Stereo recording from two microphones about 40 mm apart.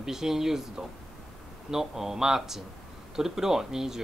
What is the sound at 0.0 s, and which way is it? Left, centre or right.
Speech, centre.